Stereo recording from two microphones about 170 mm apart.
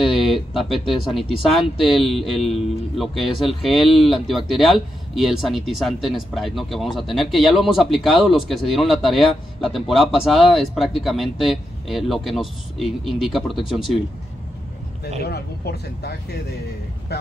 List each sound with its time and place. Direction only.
0.0 s speech: centre (ahead or behind)
15.2 s speech: 70° left (ahead or behind)